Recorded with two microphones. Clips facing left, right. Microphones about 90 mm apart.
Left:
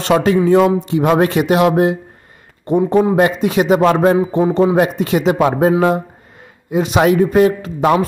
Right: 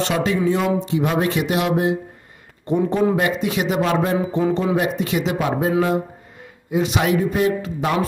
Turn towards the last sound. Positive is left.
turn(degrees=45)  # may be behind; listen again after turning